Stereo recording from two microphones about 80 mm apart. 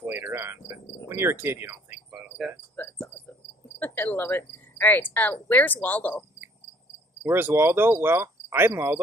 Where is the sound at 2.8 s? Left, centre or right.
Left.